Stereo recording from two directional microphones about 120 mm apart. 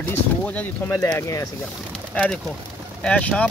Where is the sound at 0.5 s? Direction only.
15° left (ahead or behind).